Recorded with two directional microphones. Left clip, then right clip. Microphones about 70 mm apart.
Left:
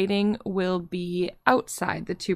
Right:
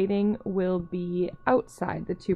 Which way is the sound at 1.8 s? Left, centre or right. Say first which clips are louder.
Left 3 dB; left.